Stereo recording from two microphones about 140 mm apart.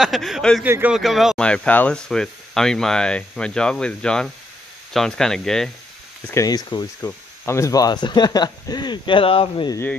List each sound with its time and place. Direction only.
0.0 s speech: centre (ahead or behind)
0.7 s speech: 15° right (ahead or behind)
0.9 s speech: centre (ahead or behind)
6.2 s speech: 25° left (ahead or behind)
7.1 s speech: 20° left (ahead or behind); by 9.7 s 40° left (ahead or behind)